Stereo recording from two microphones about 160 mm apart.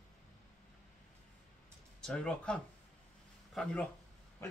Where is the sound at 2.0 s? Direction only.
5° left (ahead or behind).